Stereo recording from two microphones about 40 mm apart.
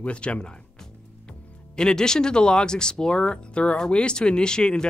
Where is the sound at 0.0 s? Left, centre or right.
Left.